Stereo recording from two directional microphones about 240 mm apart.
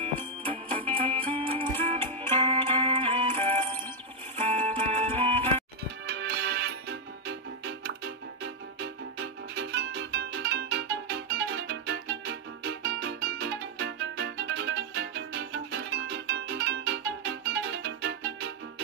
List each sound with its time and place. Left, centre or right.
0.5 s music: right
6.0 s music: right